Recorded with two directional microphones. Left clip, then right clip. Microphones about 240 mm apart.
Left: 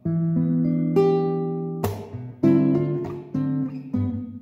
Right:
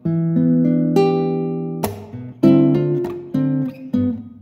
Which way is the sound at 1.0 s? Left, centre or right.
Right.